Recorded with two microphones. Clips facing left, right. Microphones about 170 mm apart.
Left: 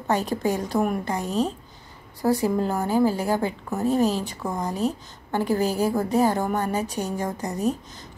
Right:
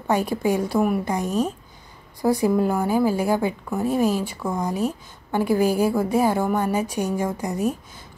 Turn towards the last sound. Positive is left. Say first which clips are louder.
# right 1 dB
turn(degrees=-10)  # may be behind; listen again after turning